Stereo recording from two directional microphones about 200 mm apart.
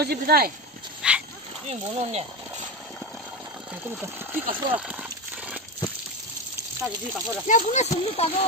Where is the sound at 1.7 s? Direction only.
35° right (ahead or behind).